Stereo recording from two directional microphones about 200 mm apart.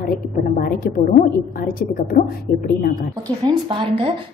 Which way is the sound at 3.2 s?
25° right (ahead or behind).